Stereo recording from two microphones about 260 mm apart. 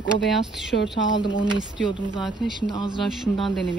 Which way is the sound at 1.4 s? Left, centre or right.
Centre.